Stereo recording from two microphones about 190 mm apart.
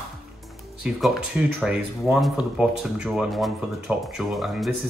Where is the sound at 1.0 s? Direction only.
5° right (ahead or behind).